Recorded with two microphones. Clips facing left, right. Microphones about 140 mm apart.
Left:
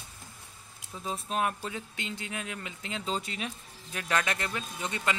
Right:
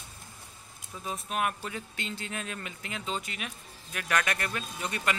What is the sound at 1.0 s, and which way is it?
Speech, 30° left (ahead or behind).